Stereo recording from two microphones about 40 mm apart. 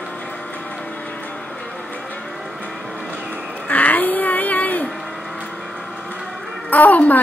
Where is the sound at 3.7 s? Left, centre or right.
Left.